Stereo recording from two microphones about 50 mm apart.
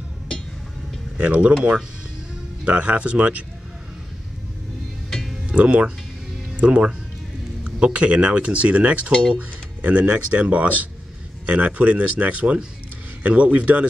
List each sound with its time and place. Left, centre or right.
1.1 s speech: right
2.6 s speech: right
5.5 s speech: right